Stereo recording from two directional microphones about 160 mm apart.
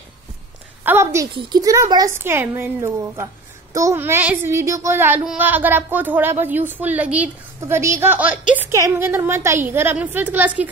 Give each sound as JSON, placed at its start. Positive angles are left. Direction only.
{"t": 0.8, "sound": "a child's voice", "side_deg": -15}
{"t": 1.3, "sound": "a child's voice", "side_deg": -30}